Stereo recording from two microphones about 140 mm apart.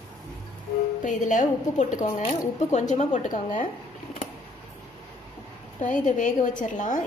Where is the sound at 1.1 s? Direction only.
65° left (ahead or behind).